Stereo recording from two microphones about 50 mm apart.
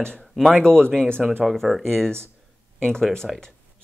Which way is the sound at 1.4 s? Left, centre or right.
Centre.